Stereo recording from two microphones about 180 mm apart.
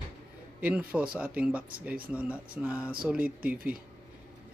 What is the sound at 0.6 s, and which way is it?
A man's voice, 10° right (ahead or behind).